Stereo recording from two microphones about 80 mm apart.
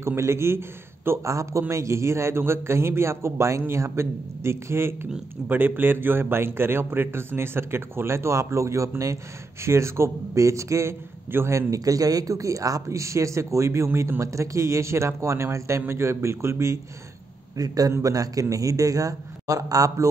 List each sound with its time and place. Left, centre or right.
0.0 s a man's voice: right
17.6 s a man's voice: right